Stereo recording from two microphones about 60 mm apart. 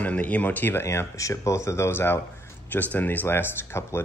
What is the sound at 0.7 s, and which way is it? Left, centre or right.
Speech, left.